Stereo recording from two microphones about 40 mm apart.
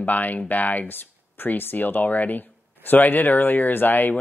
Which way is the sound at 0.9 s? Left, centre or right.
Left.